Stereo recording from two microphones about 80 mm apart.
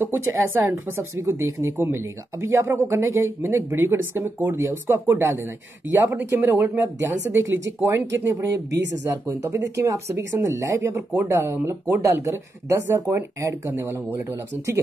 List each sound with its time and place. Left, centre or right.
0.0 s a woman's voice: right
9.3 s a woman's voice: right